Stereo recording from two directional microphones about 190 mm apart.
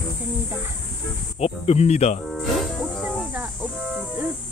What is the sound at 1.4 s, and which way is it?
Speech, 35° left (ahead or behind).